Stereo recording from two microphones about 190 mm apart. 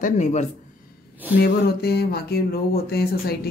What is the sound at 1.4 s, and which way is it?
Speech, 55° left (ahead or behind).